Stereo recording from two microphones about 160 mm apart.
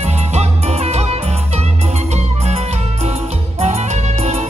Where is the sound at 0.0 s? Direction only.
45° right (ahead or behind).